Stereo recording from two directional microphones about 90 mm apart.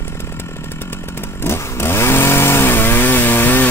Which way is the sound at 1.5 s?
30° left (ahead or behind).